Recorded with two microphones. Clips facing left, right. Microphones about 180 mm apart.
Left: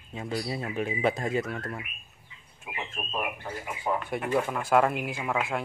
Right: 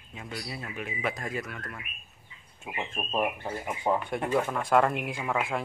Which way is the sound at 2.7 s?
25° right (ahead or behind).